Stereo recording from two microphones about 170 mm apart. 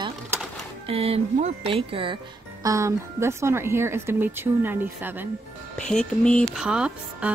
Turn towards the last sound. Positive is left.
turn(degrees=-5)  # may be behind; listen again after turning